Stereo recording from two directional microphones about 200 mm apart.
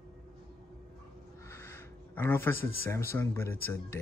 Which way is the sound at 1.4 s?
15° left (ahead or behind).